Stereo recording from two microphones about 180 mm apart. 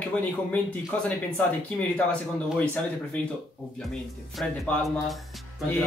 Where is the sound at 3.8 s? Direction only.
Centre (ahead or behind).